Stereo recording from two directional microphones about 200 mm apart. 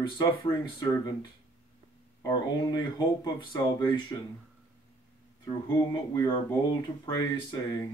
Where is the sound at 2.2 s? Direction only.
20° left (ahead or behind).